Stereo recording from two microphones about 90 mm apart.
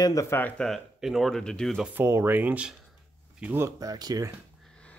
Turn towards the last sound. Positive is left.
turn(degrees=10)  # may be behind; listen again after turning